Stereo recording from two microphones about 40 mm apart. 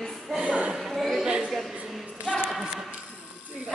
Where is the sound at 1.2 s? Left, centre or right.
Right.